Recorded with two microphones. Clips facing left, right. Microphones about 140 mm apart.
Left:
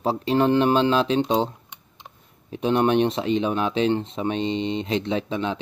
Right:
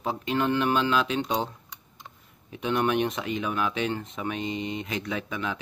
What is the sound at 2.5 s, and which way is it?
Speech, 30° left (ahead or behind).